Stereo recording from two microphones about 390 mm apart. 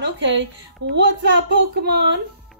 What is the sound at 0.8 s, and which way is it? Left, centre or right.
Speech, right.